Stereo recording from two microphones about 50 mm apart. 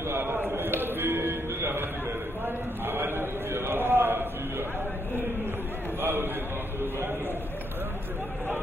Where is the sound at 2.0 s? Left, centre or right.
Right.